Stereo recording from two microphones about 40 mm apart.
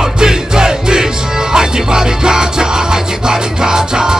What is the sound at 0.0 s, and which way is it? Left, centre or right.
Music, centre.